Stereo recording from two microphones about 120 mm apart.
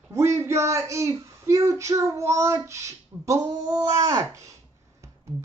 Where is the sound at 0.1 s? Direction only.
20° right (ahead or behind).